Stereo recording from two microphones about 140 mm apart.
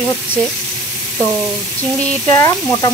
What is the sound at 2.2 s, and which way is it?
Speech, 25° left (ahead or behind).